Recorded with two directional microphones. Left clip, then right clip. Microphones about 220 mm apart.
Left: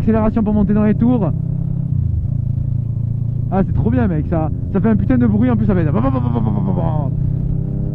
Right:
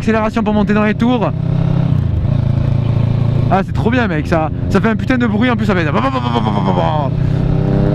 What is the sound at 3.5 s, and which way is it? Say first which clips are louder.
Speech: right 5 dB; 10° right (ahead or behind).